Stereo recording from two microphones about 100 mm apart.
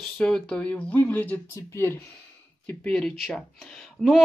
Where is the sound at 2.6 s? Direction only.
10° left (ahead or behind).